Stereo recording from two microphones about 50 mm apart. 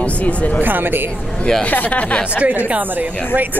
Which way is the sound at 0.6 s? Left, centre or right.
Right.